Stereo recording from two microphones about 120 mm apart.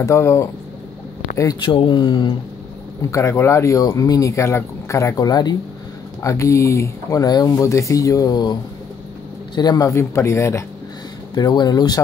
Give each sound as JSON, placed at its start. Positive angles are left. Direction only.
{"t": 0.0, "sound": "speech", "side_deg": 25}
{"t": 1.4, "sound": "speech", "side_deg": 35}
{"t": 3.0, "sound": "speech", "side_deg": 25}
{"t": 9.6, "sound": "speech", "side_deg": 30}
{"t": 11.3, "sound": "speech", "side_deg": 35}